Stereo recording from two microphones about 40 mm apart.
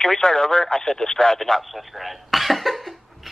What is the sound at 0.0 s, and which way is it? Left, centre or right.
Speech, centre.